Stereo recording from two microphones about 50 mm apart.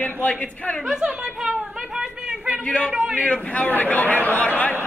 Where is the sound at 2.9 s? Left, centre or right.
Right.